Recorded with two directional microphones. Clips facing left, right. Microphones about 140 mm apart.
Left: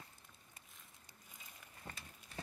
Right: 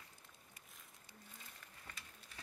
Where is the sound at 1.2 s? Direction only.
10° left (ahead or behind).